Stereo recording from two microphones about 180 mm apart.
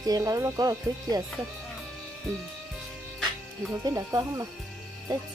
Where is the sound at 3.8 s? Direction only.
20° right (ahead or behind).